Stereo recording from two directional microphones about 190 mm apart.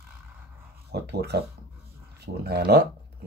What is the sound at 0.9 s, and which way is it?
Speech, 60° right (ahead or behind).